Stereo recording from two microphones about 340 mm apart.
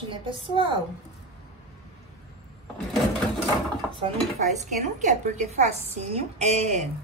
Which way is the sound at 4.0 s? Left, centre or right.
Right.